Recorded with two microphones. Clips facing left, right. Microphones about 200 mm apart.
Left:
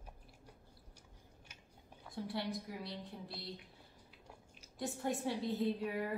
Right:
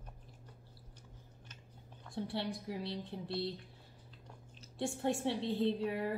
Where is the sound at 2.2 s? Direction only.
30° right (ahead or behind).